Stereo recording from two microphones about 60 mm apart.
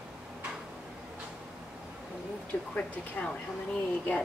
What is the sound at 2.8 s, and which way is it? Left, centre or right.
Speech, centre.